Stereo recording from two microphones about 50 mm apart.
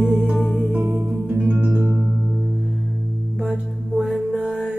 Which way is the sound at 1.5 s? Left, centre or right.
Right.